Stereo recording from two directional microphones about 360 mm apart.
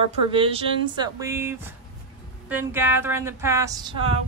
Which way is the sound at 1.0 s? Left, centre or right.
Centre.